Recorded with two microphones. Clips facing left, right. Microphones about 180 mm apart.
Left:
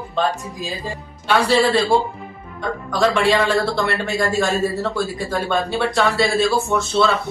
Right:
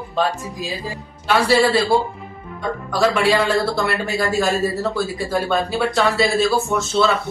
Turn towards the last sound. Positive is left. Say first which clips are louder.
# even
turn(degrees=0)  # may be behind; listen again after turning